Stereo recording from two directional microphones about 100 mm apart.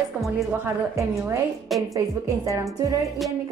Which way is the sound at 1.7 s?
Centre (ahead or behind).